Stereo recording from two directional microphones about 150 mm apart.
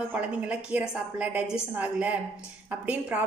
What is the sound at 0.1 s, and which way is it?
A woman's voice, 10° right (ahead or behind).